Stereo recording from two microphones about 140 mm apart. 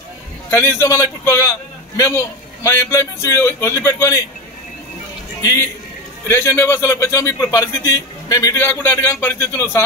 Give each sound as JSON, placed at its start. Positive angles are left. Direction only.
{"t": 0.5, "sound": "a man's voice", "side_deg": 20}
{"t": 5.4, "sound": "a man's voice", "side_deg": 25}